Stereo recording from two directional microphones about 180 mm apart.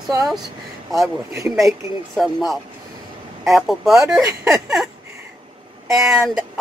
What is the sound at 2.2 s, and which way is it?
Speech, centre (ahead or behind).